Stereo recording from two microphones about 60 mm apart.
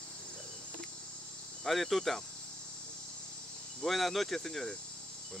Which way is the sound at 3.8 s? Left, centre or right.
Centre.